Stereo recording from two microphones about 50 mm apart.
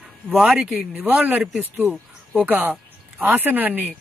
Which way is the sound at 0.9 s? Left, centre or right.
Right.